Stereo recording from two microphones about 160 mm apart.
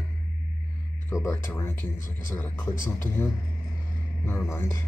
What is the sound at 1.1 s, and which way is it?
A man's voice, 15° left (ahead or behind).